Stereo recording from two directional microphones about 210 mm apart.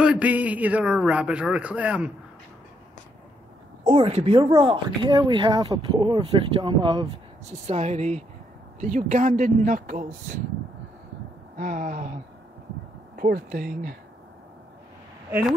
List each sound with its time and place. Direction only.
0.0 s a man's voice: 5° right (ahead or behind)
3.8 s speech: 25° right (ahead or behind)
11.5 s speech: 40° right (ahead or behind)